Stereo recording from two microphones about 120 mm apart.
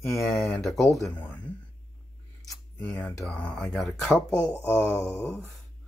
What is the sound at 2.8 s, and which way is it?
Speech, 15° left (ahead or behind).